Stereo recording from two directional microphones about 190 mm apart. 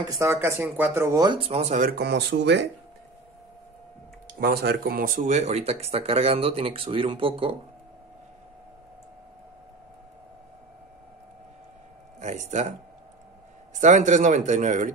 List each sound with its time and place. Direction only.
0.1 s speech: 15° right (ahead or behind); by 1.9 s 35° right (ahead or behind)
2.0 s speech: 60° right (ahead or behind)
4.4 s speech: 55° right (ahead or behind); by 7.5 s 30° right (ahead or behind)
12.2 s speech: 40° right (ahead or behind)
13.7 s speech: 40° right (ahead or behind)